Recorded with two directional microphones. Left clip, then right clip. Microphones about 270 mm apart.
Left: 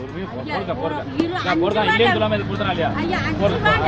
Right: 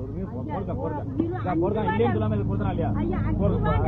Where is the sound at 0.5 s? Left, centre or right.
Left.